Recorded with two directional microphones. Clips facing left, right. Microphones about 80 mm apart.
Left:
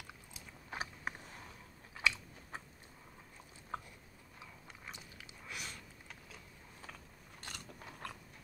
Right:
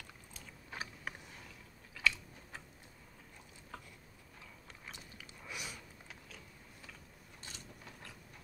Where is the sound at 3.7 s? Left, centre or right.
Left.